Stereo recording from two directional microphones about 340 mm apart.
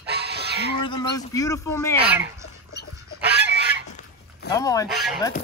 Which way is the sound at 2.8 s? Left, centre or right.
Left.